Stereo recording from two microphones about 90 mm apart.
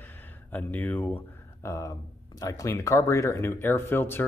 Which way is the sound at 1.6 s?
40° left (ahead or behind).